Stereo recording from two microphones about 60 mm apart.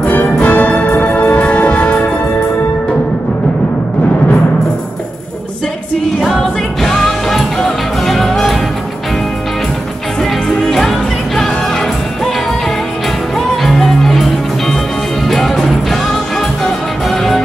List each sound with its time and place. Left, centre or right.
0.0 s music: left
6.2 s music: centre
10.6 s music: centre
13.6 s music: centre
15.2 s music: centre